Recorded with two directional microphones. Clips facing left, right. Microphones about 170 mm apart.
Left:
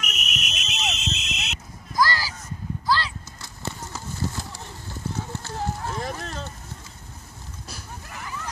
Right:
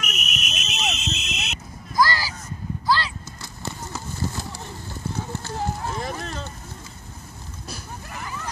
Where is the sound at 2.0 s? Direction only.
5° right (ahead or behind).